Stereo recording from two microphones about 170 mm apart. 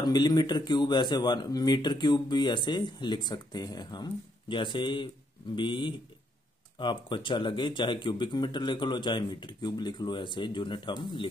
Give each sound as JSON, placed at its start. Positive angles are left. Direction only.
{"t": 0.0, "sound": "a man's voice", "side_deg": 25}